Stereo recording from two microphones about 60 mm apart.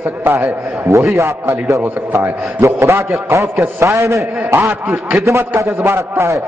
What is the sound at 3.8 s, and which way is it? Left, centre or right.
Speech, right.